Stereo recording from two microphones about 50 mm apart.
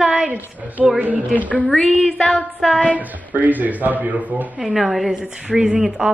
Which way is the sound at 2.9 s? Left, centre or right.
Right.